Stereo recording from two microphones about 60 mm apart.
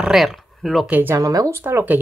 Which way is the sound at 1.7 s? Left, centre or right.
Right.